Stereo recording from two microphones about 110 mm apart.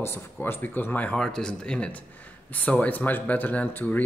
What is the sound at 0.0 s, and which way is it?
Speech, 20° left (ahead or behind).